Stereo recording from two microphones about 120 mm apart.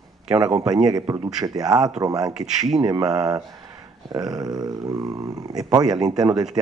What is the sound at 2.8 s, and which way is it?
Speech, 35° right (ahead or behind).